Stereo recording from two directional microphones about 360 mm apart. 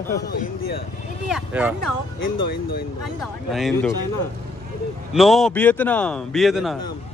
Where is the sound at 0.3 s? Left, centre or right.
Left.